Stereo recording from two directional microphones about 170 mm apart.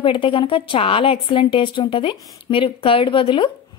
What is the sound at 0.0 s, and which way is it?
Speech, 30° left (ahead or behind).